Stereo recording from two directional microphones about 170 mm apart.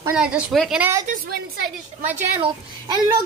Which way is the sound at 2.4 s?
25° right (ahead or behind).